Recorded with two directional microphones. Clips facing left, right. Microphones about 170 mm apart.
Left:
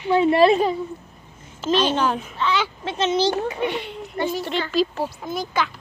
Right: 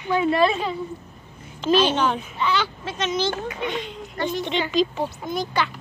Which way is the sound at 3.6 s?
60° left (ahead or behind).